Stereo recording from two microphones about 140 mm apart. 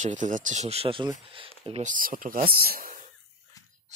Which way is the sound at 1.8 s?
75° right (ahead or behind).